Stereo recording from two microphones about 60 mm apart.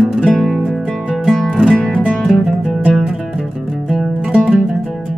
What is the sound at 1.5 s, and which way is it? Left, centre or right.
Music, centre.